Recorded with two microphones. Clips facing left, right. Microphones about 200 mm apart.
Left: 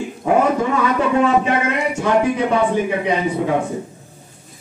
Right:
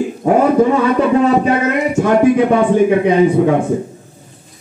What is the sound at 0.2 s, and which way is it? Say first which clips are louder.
Speech: right 5 dB; 40° right (ahead or behind).